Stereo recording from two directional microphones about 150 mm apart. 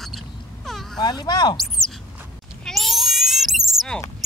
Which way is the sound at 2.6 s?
Centre (ahead or behind).